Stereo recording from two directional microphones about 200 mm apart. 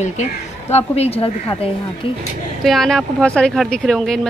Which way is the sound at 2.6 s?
Centre (ahead or behind).